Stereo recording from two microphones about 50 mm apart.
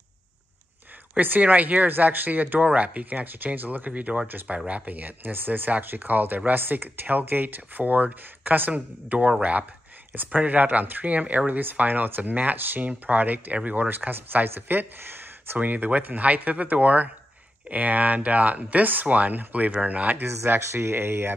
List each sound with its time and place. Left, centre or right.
1.1 s speech: right
15.6 s speech: right
20.4 s speech: right